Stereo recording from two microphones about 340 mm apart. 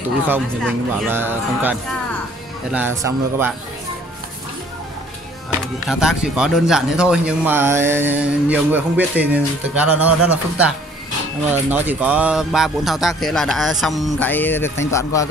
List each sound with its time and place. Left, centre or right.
0.3 s speech: centre
3.0 s a man's voice: centre
5.9 s speech: centre